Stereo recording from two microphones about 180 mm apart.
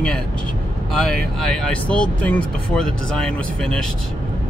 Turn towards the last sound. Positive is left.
turn(degrees=5)  # may be behind; listen again after turning